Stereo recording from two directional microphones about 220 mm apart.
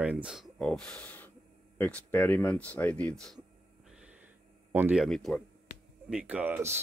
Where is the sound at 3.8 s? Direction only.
5° right (ahead or behind).